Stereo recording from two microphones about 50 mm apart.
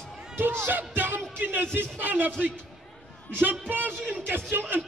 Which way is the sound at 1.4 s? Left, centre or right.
Right.